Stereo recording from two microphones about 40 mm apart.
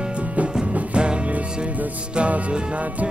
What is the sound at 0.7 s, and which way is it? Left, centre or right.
Music, right.